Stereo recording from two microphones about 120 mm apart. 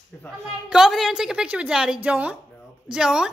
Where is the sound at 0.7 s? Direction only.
5° right (ahead or behind).